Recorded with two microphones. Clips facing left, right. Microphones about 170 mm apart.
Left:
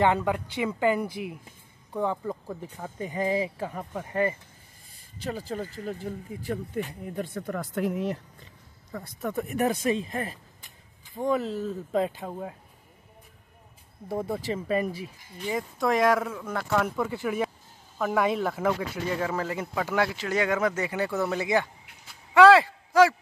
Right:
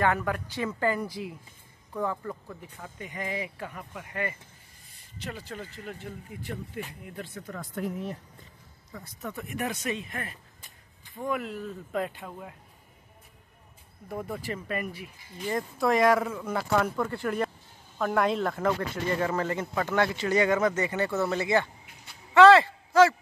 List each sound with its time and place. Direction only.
0.0 s speech: 20° left (ahead or behind)
2.4 s speech: 35° left (ahead or behind)
7.3 s speech: 65° left (ahead or behind); by 8.2 s 90° left
8.9 s speech: 50° left (ahead or behind); by 12.5 s 35° left (ahead or behind)
14.0 s speech: 35° left (ahead or behind)
15.4 s speech: centre (ahead or behind)
22.0 s a sound: 10° left (ahead or behind)